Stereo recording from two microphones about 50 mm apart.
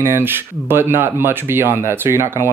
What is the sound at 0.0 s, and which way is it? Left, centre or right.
Speech, right.